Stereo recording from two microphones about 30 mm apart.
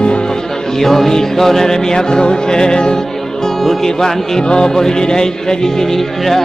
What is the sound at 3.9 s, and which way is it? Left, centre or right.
Speech, centre.